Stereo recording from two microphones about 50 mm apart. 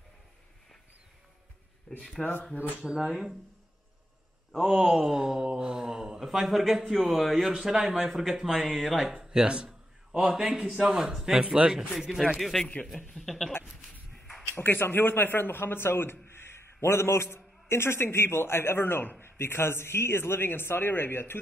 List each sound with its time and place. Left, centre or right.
1.9 s speech: centre
2.5 s speech: left
2.9 s speech: centre
4.6 s speech: centre
9.0 s a man's voice: centre
11.4 s speech: right
12.0 s speech: centre
12.4 s speech: centre
14.5 s a man's voice: left